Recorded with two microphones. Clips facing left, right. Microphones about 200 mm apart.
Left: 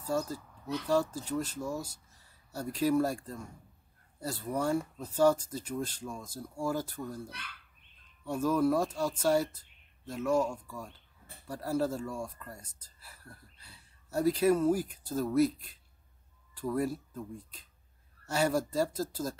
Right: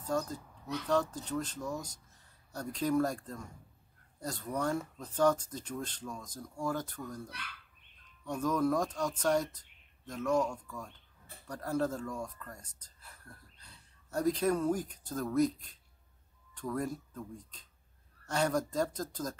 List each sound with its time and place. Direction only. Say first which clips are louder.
0.0 s speech: left 2 dB; 10° left (ahead or behind)
8.3 s speech: left 3 dB; 5° left (ahead or behind)